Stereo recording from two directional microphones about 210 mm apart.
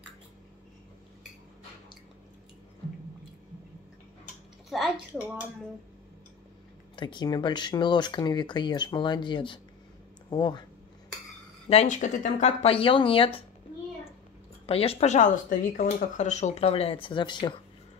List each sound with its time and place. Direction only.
4.6 s a woman's voice: centre (ahead or behind)
7.0 s speech: 20° left (ahead or behind)
11.7 s speech: 30° left (ahead or behind)
14.7 s speech: 25° left (ahead or behind)